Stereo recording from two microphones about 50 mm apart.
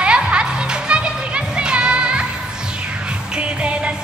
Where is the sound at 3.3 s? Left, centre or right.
Right.